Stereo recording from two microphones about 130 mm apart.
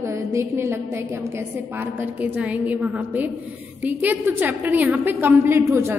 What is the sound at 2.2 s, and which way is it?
A woman's voice, 10° right (ahead or behind).